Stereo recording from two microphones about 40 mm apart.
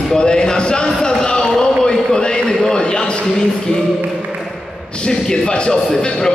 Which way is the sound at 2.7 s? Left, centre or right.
Left.